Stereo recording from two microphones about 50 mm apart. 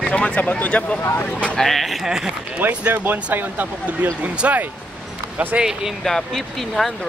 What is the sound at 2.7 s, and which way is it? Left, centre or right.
Speech, right.